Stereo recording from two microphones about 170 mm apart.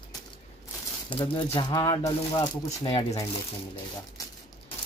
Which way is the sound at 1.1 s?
30° left (ahead or behind).